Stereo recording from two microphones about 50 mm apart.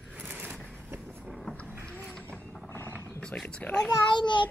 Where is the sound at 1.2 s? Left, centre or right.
Centre.